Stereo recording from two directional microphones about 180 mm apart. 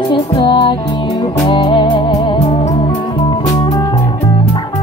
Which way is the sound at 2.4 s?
35° left (ahead or behind).